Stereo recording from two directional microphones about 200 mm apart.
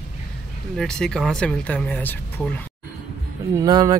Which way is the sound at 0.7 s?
5° left (ahead or behind).